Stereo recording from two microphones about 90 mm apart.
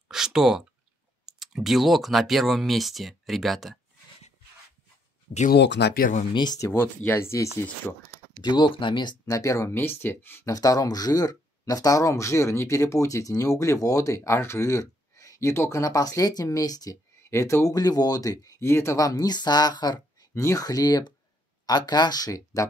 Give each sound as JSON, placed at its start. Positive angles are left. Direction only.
{"t": 0.1, "sound": "a sound", "side_deg": -5}
{"t": 1.2, "sound": "speech", "side_deg": -5}
{"t": 6.3, "sound": "speech", "side_deg": 55}
{"t": 6.7, "sound": "speech", "side_deg": 20}
{"t": 8.4, "sound": "speech", "side_deg": 55}
{"t": 9.2, "sound": "speech", "side_deg": 35}
{"t": 10.5, "sound": "speech", "side_deg": 40}
{"t": 17.3, "sound": "speech", "side_deg": 30}
{"t": 17.7, "sound": "speech", "side_deg": 45}